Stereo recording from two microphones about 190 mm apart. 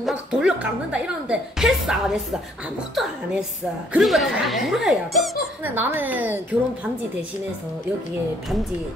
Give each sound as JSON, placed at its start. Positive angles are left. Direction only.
{"t": 0.0, "sound": "speech", "side_deg": -5}
{"t": 5.6, "sound": "a woman's voice", "side_deg": -10}